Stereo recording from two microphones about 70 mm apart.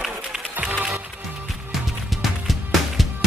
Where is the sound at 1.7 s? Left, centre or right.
Centre.